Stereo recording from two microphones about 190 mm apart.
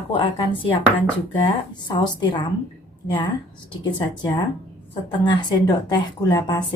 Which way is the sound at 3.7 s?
25° left (ahead or behind).